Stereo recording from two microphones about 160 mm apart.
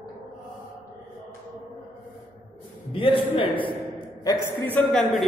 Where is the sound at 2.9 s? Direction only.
35° left (ahead or behind).